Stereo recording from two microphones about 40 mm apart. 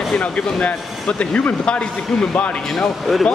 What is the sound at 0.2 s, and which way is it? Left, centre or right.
Speech, left.